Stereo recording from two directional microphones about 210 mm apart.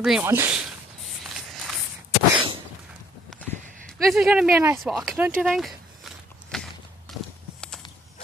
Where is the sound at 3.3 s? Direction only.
Centre (ahead or behind).